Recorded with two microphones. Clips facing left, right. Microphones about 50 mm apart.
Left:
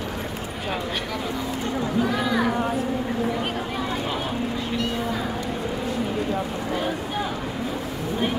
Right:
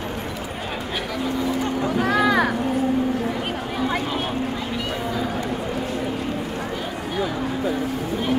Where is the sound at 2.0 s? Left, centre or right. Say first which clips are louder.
Right 4 dB; right.